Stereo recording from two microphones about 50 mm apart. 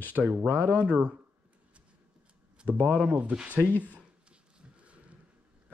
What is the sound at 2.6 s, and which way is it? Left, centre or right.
Speech, right.